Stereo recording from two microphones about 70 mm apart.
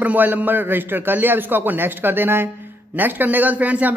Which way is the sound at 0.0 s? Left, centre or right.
Right.